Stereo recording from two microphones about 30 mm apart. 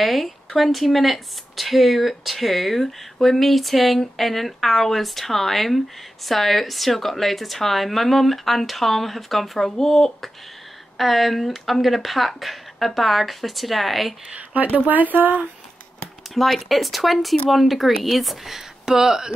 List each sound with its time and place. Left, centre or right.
0.0 s speech: centre
11.0 s speech: centre
14.5 s speech: right
16.3 s speech: centre
18.6 s speech: centre